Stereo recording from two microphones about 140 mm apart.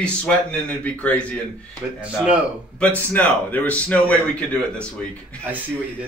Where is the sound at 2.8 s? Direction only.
10° left (ahead or behind).